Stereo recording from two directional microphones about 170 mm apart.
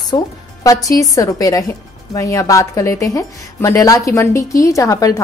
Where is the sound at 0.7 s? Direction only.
20° left (ahead or behind).